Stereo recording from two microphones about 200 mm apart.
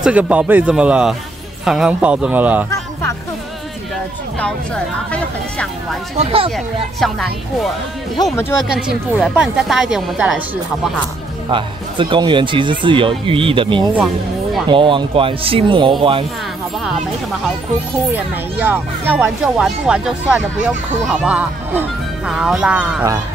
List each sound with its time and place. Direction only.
0.0 s speech: 5° right (ahead or behind)
2.7 s music: 15° left (ahead or behind)
4.4 s speech: 5° left (ahead or behind)
6.1 s speech: 30° right (ahead or behind)
7.0 s speech: centre (ahead or behind)
11.5 s speech: 25° right (ahead or behind)
13.9 s speech: centre (ahead or behind)
14.7 s speech: 25° right (ahead or behind)
18.1 s speech: 10° right (ahead or behind)